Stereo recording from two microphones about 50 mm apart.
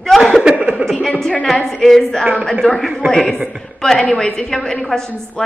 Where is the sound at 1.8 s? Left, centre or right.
Centre.